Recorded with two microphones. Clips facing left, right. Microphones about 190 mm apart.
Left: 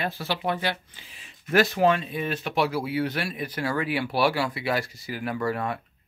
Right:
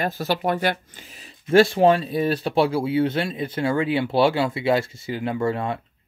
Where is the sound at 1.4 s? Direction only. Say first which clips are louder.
Right 5 dB; 30° right (ahead or behind).